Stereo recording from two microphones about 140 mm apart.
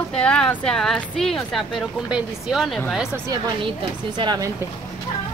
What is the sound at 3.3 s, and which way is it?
Speech, 35° right (ahead or behind).